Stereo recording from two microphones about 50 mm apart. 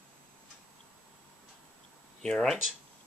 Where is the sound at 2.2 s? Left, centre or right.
Centre.